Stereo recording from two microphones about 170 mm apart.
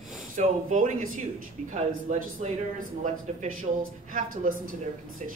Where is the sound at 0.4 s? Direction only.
50° right (ahead or behind).